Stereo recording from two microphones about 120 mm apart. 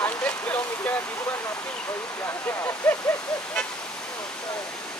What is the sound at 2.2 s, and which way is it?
Waterfall, 20° left (ahead or behind).